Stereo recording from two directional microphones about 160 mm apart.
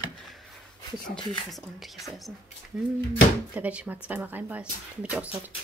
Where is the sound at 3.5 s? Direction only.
10° right (ahead or behind).